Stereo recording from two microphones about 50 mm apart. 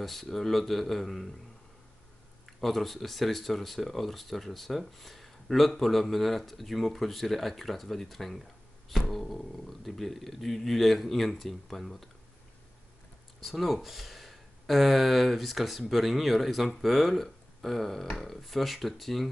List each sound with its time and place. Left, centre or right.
0.0 s speech: centre
2.4 s speech: centre
13.4 s speech: centre